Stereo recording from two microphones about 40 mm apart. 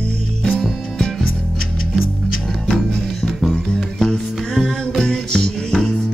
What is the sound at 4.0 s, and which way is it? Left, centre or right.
Music, centre.